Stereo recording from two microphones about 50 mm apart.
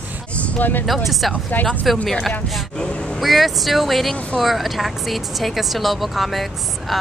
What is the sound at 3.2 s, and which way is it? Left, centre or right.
A woman's voice, centre.